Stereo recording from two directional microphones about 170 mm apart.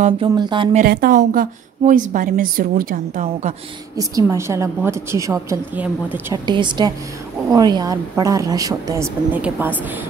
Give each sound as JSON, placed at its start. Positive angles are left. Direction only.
{"t": 0.0, "sound": "speech", "side_deg": -30}
{"t": 0.8, "sound": "a woman's voice", "side_deg": -55}
{"t": 3.9, "sound": "a woman's voice", "side_deg": -20}
{"t": 6.4, "sound": "a woman's voice", "side_deg": -25}